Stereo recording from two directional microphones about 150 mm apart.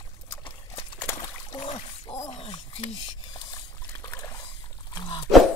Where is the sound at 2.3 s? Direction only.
40° left (ahead or behind).